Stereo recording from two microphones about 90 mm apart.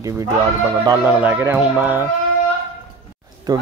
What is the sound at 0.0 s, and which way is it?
Speech, 40° right (ahead or behind).